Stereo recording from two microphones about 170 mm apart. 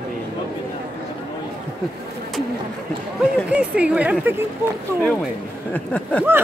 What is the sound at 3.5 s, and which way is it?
Speech, 5° right (ahead or behind).